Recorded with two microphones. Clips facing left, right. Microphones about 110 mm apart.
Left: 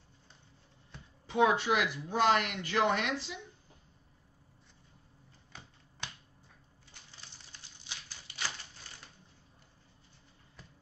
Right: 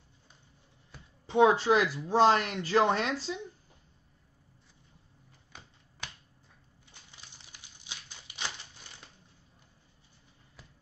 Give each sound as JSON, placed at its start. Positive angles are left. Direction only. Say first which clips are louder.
{"t": 1.2, "sound": "speech", "louder": "right 4 dB", "side_deg": -30}
{"t": 6.9, "sound": "typewriter", "louder": "even", "side_deg": -15}